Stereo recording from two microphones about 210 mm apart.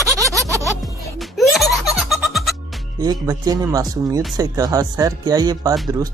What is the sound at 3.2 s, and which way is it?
Speech, 15° right (ahead or behind).